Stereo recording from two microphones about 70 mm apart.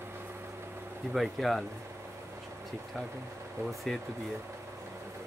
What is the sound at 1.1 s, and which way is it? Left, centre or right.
Speech, centre.